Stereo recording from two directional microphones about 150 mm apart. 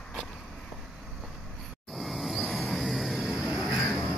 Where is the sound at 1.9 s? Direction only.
Centre (ahead or behind).